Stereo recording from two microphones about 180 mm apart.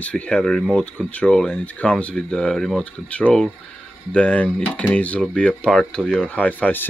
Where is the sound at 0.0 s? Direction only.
5° left (ahead or behind).